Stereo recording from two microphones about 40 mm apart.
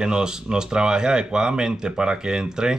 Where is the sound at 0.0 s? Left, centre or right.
Centre.